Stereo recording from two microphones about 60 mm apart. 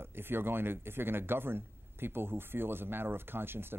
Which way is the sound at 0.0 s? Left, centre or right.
Right.